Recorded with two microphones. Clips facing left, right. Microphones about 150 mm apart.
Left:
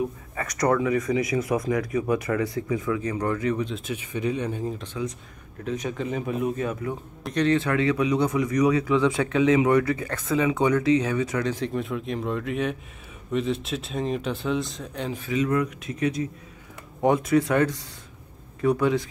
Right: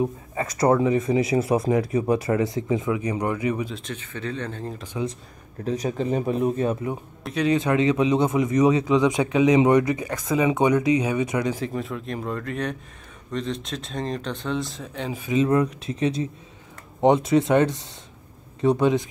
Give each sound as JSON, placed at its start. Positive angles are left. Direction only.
{"t": 0.0, "sound": "speech", "side_deg": -30}
{"t": 3.7, "sound": "speech", "side_deg": 10}
{"t": 4.9, "sound": "speech", "side_deg": -25}
{"t": 5.6, "sound": "speech", "side_deg": -35}
{"t": 7.2, "sound": "speech", "side_deg": -10}
{"t": 15.3, "sound": "speech", "side_deg": -30}